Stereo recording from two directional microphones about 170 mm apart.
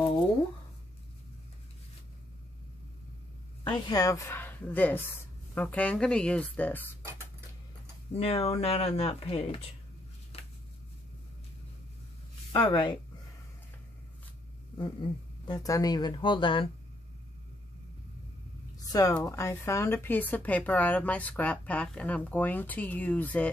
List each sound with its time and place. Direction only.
3.6 s speech: 25° left (ahead or behind)
8.1 s speech: 35° left (ahead or behind)
10.3 s a sound: 35° left (ahead or behind)
12.5 s speech: 30° left (ahead or behind)
15.4 s speech: 20° left (ahead or behind)
18.8 s a sound: 20° left (ahead or behind)
19.2 s speech: 15° left (ahead or behind)